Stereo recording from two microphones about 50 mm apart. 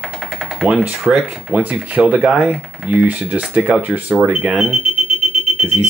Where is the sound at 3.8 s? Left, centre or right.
Right.